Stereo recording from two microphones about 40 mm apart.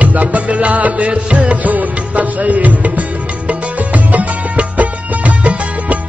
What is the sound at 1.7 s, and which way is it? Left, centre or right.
Music, right.